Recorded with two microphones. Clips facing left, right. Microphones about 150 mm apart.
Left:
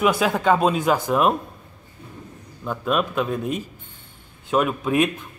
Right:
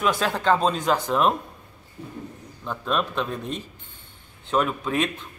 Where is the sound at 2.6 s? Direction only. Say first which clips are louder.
Left 3 dB; 5° left (ahead or behind).